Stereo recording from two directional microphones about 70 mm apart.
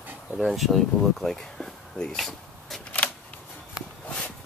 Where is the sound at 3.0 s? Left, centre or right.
Centre.